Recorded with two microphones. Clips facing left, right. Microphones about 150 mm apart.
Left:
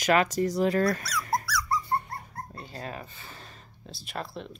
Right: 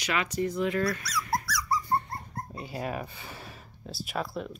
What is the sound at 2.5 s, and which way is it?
Speech, 15° right (ahead or behind).